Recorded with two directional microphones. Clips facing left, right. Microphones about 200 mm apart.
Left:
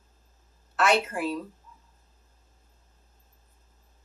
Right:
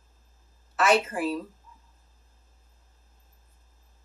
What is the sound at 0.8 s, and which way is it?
Speech, centre (ahead or behind).